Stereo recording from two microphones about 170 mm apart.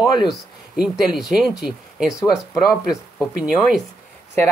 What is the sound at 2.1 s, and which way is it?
Speech, 20° left (ahead or behind).